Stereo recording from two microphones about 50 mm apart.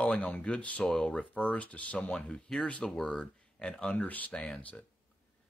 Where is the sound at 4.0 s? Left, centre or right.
Left.